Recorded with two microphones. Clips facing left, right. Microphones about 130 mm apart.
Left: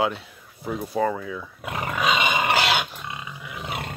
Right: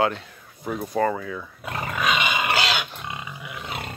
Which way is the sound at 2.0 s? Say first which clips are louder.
Left 2 dB; 35° left (ahead or behind).